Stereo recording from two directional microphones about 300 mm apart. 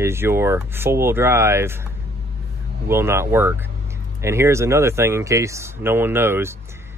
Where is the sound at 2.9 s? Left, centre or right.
Centre.